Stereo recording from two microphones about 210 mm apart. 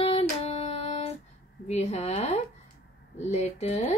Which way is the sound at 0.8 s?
30° left (ahead or behind).